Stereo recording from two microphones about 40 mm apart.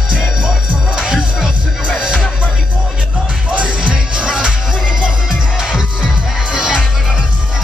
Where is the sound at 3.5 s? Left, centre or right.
Right; by 6.8 s centre.